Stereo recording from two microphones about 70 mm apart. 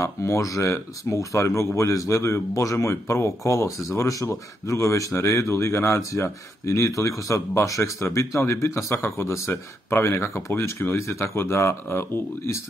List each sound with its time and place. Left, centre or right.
0.0 s speech: left